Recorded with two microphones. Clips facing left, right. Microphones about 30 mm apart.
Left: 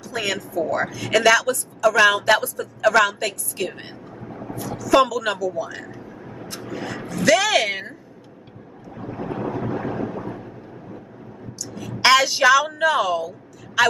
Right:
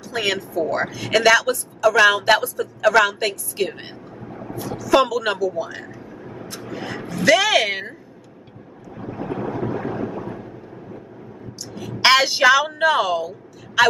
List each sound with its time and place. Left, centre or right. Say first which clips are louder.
0.0 s speech: right 3 dB; centre
4.2 s boat: even; centre
4.6 s speech: even; centre
5.8 s vehicle: even; centre
6.5 s speech: even; centre
8.9 s a sound: right 1 dB; centre
12.0 s speech: right 1 dB; centre